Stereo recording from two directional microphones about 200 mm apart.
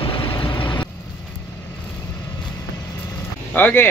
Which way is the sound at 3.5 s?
10° left (ahead or behind).